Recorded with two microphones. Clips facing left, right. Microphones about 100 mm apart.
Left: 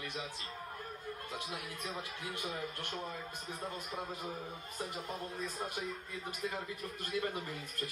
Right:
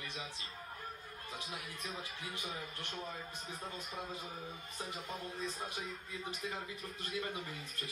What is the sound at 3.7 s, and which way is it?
Speech, 55° left (ahead or behind).